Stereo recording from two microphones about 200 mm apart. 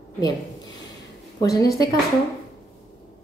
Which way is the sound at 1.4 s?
15° left (ahead or behind).